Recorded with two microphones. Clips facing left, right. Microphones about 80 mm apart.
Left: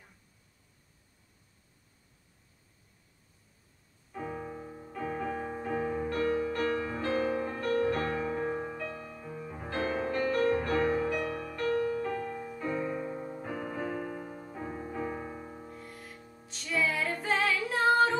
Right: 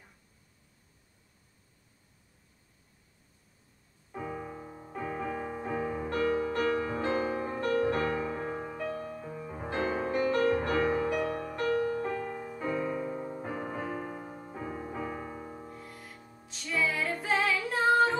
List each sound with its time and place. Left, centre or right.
4.3 s music: centre
8.3 s music: centre
12.7 s music: centre
13.4 s music: centre